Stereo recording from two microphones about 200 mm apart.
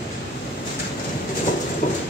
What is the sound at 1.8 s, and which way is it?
Clip-clop, 45° left (ahead or behind).